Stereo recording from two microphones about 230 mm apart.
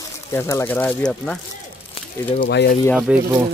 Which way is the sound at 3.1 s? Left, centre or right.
Centre.